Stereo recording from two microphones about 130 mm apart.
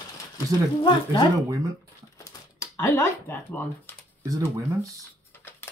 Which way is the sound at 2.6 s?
20° left (ahead or behind).